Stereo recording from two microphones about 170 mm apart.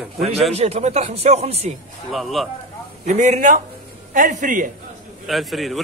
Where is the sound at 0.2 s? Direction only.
35° right (ahead or behind).